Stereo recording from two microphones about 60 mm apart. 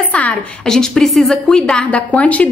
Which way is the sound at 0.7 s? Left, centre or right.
Centre.